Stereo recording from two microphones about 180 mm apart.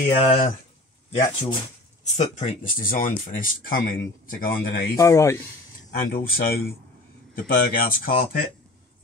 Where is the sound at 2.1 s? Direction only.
40° left (ahead or behind).